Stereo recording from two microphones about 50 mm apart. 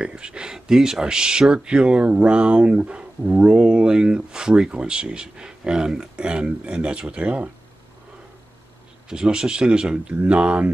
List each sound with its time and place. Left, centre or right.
0.0 s speech: centre
9.1 s speech: centre